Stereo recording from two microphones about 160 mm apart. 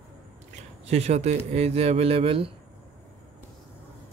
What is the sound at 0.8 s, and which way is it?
Speech, 40° right (ahead or behind).